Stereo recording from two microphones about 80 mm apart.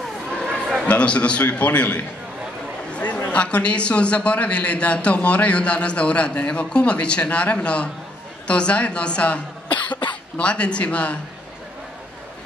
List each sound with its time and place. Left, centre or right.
0.8 s a man's voice: centre
2.9 s chatter: centre
3.3 s a man's voice: centre
9.7 s cough: left
10.3 s a man's voice: centre